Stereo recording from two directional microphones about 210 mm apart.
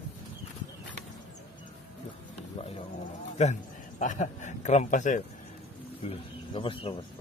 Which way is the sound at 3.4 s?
35° left (ahead or behind).